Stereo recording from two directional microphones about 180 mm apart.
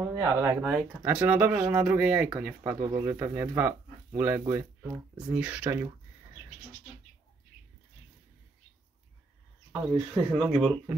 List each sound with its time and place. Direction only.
0.0 s speech: 15° right (ahead or behind)
0.6 s speech: 5° right (ahead or behind)
9.7 s speech: centre (ahead or behind)